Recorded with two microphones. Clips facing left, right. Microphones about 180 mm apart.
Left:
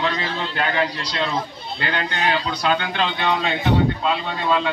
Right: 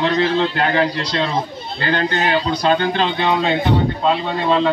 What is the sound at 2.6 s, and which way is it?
A man's voice, 35° right (ahead or behind).